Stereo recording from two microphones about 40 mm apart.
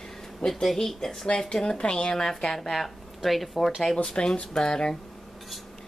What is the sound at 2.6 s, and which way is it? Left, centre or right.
Speech, centre.